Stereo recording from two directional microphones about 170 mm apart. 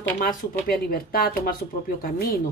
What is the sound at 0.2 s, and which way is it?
Speech, 60° left (ahead or behind).